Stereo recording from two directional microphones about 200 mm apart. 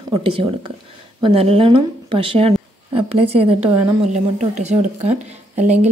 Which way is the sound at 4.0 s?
35° right (ahead or behind).